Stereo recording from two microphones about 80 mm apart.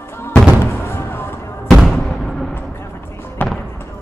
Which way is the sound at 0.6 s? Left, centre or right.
Left.